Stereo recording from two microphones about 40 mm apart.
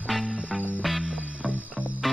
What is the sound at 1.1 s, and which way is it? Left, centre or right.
Music, centre.